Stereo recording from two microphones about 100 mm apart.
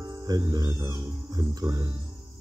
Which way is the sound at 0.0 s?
40° right (ahead or behind).